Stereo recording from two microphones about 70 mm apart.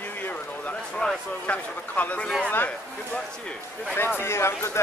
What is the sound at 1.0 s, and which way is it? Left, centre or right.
Speech, centre.